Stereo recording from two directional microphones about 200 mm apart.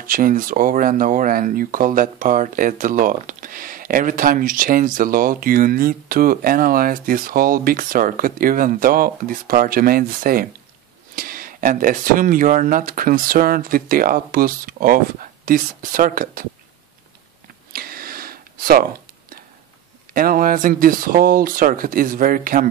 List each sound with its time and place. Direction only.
0.0 s speech: 45° right (ahead or behind)
17.7 s a sound: 45° right (ahead or behind)
20.2 s speech: 45° right (ahead or behind)